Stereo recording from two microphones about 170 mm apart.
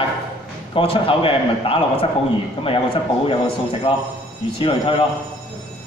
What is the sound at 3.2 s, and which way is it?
A man's voice, 30° left (ahead or behind).